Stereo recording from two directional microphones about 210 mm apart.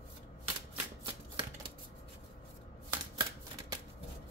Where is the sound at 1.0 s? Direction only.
25° right (ahead or behind).